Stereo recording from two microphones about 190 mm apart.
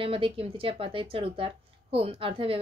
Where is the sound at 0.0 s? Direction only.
30° right (ahead or behind).